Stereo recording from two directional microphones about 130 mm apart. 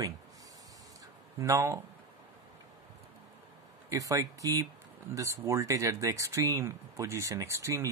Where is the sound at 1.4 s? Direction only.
20° right (ahead or behind).